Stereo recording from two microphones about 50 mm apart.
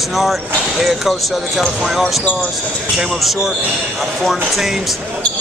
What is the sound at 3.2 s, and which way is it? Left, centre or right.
Speech, centre.